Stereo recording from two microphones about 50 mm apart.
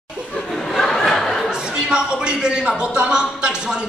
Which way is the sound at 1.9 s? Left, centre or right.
Centre.